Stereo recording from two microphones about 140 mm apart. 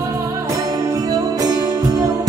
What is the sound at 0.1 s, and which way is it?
Music, 20° right (ahead or behind).